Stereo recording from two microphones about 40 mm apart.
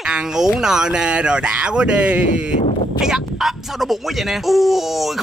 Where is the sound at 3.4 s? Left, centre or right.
Centre.